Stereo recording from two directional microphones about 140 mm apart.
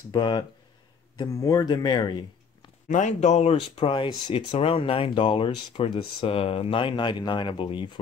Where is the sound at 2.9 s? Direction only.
60° left (ahead or behind).